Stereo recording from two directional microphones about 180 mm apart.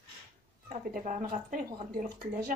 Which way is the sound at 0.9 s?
45° right (ahead or behind).